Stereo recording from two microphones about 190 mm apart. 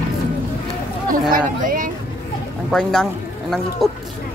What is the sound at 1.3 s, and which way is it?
Speech, 45° right (ahead or behind).